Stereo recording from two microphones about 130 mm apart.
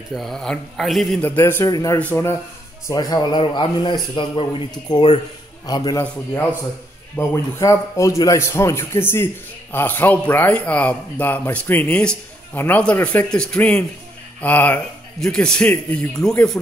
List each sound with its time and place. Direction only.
0.1 s a man's voice: centre (ahead or behind)
1.2 s a man's voice: 15° left (ahead or behind)
2.0 s a man's voice: 15° left (ahead or behind)
2.9 s a man's voice: 30° left (ahead or behind)
7.2 s a man's voice: 20° left (ahead or behind); by 16.5 s 5° left (ahead or behind)